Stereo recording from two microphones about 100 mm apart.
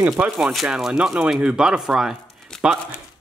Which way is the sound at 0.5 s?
5° right (ahead or behind).